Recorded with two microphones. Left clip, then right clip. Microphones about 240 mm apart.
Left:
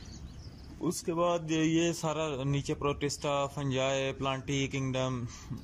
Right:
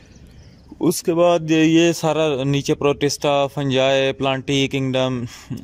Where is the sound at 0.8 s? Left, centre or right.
Right.